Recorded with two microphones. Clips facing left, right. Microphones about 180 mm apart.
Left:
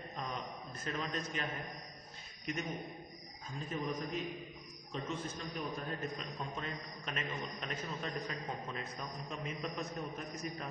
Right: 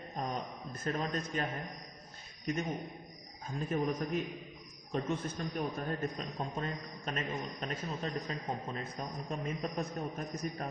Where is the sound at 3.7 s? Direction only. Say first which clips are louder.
Right 6 dB; 50° right (ahead or behind).